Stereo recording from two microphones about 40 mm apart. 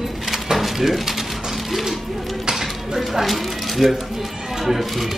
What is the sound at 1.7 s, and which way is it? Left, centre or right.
Mechanisms, centre.